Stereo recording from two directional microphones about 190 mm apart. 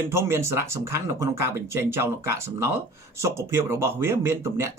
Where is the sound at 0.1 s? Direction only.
15° right (ahead or behind).